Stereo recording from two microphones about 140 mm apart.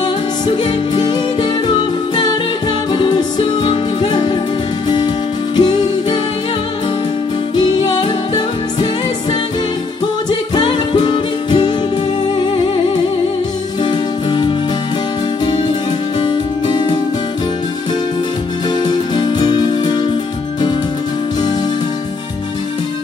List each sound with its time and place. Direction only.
0.7 s music: 30° left (ahead or behind)
2.9 s music: 35° left (ahead or behind)
7.5 s music: 35° left (ahead or behind)
10.5 s music: 35° left (ahead or behind)
13.8 s music: 35° left (ahead or behind)
16.2 s music: 35° left (ahead or behind)
18.9 s music: 35° left (ahead or behind)